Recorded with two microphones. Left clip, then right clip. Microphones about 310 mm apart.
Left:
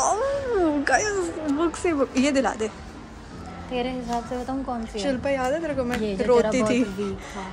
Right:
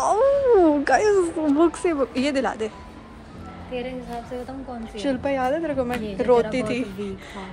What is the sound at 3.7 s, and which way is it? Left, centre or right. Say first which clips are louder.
Speech: left 3 dB; left.